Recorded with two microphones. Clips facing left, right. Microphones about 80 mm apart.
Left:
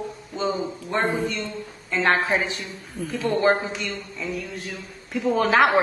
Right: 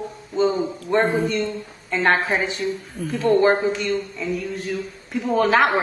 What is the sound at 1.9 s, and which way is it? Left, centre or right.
Speech, centre.